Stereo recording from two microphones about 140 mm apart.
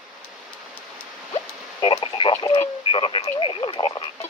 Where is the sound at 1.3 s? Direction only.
40° left (ahead or behind).